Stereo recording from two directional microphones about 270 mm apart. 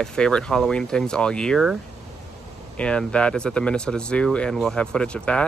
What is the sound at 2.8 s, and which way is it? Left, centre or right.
Speech, centre.